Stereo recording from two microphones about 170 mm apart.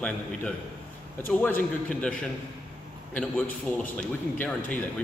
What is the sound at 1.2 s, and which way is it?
A man's voice, 10° left (ahead or behind).